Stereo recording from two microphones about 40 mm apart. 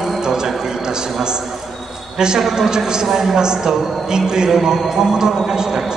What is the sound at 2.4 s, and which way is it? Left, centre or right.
Speech, centre.